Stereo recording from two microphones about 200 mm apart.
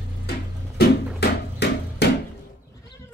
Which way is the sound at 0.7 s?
55° left (ahead or behind).